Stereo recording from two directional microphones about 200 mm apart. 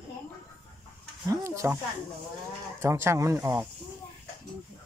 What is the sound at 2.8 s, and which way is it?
Speech, 15° right (ahead or behind).